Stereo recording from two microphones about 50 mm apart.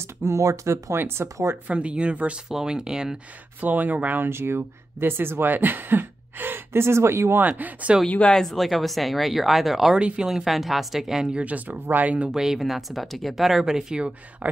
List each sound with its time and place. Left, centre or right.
0.0 s speech: right
0.9 s speech: right
1.7 s speech: right
3.6 s speech: right
4.3 s speech: right
7.3 s speech: right
8.3 s speech: centre
9.9 s speech: right
11.3 s speech: right
12.3 s speech: centre
14.4 s speech: right